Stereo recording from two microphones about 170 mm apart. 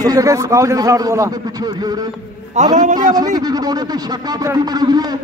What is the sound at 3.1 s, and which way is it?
A man's voice, 20° right (ahead or behind).